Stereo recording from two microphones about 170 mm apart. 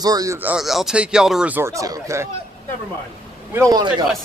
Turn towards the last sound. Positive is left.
turn(degrees=-25)  # may be behind; listen again after turning